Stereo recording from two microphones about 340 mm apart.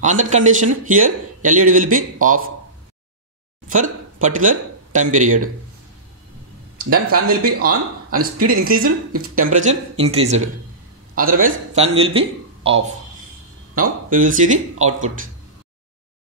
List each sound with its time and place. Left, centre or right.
0.0 s a man's voice: right
3.6 s speech: right
6.8 s speech: right
8.2 s a man's voice: right